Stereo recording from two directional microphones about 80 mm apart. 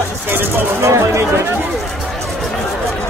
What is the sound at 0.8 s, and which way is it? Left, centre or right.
Speech, right.